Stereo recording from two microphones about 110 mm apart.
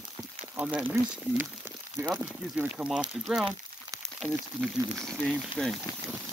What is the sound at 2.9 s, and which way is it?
Speech, 5° right (ahead or behind).